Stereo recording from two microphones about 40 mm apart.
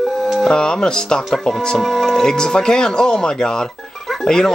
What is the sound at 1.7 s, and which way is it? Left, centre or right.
Speech, centre.